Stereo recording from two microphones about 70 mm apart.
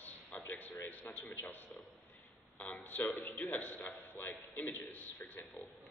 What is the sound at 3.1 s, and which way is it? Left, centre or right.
A man's voice, left.